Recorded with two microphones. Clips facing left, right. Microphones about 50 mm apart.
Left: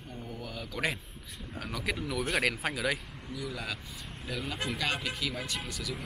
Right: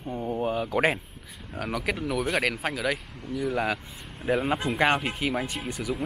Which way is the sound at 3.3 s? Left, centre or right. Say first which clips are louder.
Right 11 dB; right.